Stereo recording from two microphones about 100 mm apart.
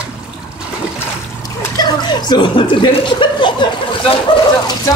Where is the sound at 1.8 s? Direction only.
45° left (ahead or behind).